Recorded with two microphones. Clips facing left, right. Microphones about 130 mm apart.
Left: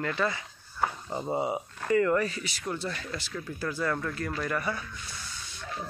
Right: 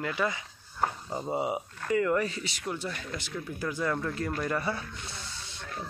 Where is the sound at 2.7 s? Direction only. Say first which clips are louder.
Left 1 dB; 10° right (ahead or behind).